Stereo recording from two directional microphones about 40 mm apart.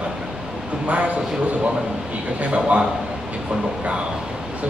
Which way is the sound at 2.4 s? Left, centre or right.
Right.